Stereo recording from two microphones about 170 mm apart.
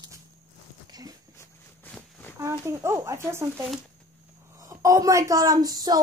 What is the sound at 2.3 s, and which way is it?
A woman's voice, 15° right (ahead or behind).